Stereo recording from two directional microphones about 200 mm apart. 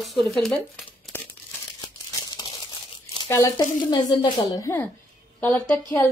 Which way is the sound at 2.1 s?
20° left (ahead or behind).